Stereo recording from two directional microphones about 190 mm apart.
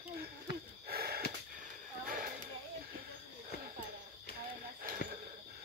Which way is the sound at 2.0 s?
45° right (ahead or behind).